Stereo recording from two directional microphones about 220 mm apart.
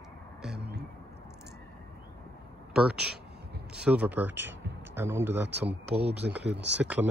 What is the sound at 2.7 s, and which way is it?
Speech, 5° right (ahead or behind).